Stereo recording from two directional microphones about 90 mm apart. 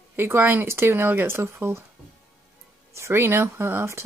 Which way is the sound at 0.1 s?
25° right (ahead or behind).